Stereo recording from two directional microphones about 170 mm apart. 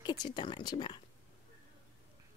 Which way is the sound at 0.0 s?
25° left (ahead or behind).